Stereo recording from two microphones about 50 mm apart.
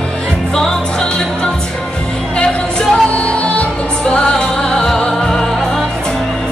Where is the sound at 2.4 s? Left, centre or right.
Centre.